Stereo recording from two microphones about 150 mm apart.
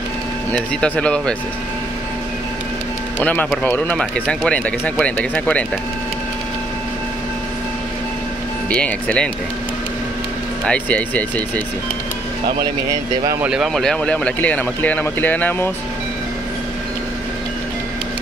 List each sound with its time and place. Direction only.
0.5 s speech: 10° left (ahead or behind)
3.2 s speech: 15° left (ahead or behind)
8.6 s speech: 10° left (ahead or behind)
10.6 s speech: 10° left (ahead or behind)
12.5 s speech: 25° right (ahead or behind)
13.4 s speech: 5° right (ahead or behind); by 15.7 s 10° left (ahead or behind)